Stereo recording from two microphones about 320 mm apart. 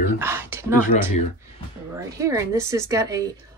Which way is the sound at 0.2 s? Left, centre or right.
Centre.